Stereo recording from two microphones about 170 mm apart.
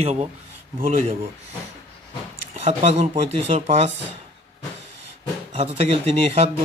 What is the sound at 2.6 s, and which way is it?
Speech, 40° right (ahead or behind).